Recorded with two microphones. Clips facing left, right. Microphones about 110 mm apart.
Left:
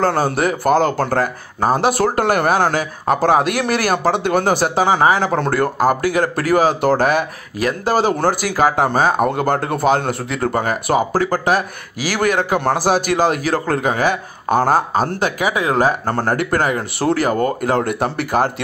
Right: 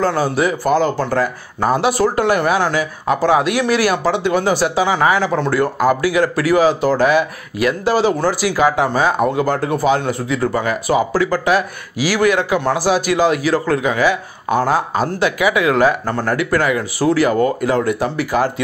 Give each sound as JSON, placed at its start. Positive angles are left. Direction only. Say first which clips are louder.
{"t": 0.0, "sound": "speech", "louder": "even", "side_deg": 50}